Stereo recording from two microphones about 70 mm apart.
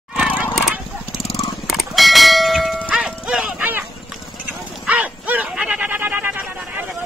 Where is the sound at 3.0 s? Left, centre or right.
Centre.